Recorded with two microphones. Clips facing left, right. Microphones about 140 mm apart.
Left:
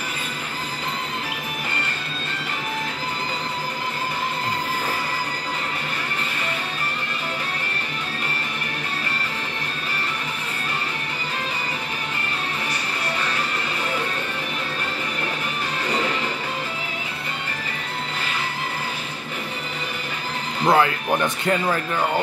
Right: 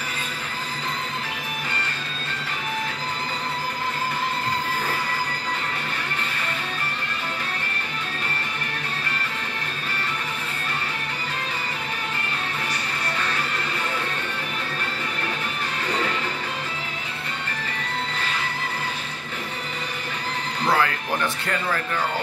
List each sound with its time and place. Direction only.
20.6 s music: 25° left (ahead or behind)
21.5 s speech: 20° left (ahead or behind)